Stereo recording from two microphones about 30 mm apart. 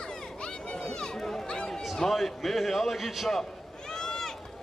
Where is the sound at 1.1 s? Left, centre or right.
Centre.